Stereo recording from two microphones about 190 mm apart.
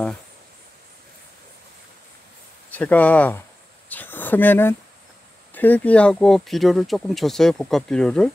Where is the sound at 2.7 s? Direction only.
10° left (ahead or behind).